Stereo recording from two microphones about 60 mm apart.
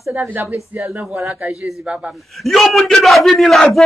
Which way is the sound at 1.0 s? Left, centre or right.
Centre.